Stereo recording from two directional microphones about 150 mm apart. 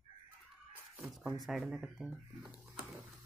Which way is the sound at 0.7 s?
Centre (ahead or behind).